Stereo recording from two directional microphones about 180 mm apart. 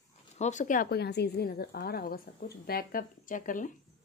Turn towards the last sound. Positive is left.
turn(degrees=45)  # may be behind; listen again after turning